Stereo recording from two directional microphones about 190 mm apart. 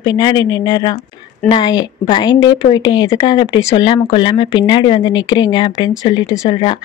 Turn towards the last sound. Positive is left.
turn(degrees=25)  # may be behind; listen again after turning